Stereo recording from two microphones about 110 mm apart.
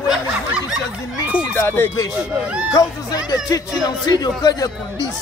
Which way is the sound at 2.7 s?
35° left (ahead or behind).